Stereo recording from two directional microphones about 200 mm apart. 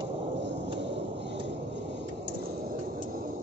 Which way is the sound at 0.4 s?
60° right (ahead or behind).